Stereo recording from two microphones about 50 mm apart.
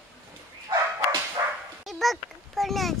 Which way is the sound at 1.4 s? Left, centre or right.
Right.